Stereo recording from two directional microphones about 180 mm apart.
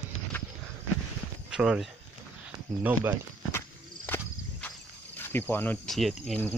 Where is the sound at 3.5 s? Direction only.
10° left (ahead or behind).